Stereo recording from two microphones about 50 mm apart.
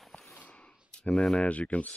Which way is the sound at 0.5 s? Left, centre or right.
Centre.